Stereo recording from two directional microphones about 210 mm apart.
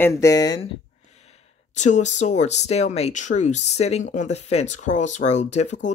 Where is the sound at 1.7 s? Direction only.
35° left (ahead or behind).